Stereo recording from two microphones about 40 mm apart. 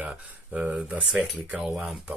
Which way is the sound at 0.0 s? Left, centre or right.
Right.